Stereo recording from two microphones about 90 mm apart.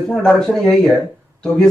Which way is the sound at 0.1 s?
5° left (ahead or behind).